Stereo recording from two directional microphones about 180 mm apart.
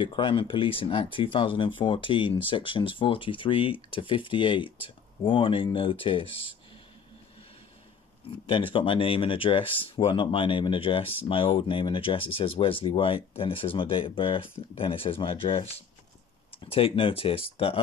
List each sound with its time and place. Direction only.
0.0 s speech: 30° left (ahead or behind)
8.5 s speech: 30° left (ahead or behind)